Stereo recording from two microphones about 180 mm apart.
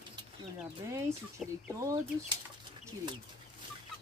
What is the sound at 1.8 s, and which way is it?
Speech, 20° right (ahead or behind).